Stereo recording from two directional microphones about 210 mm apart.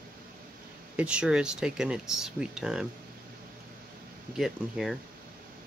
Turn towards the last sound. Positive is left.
turn(degrees=0)  # may be behind; listen again after turning